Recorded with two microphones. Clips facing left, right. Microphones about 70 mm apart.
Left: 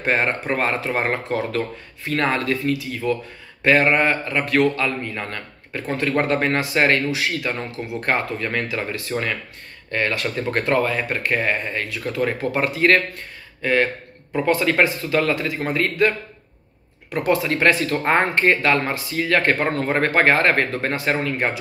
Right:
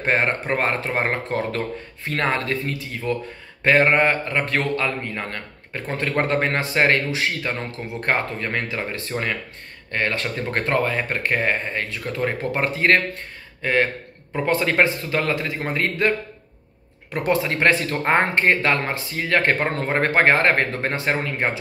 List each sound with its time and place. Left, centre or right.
0.0 s a man's voice: right
17.1 s a man's voice: right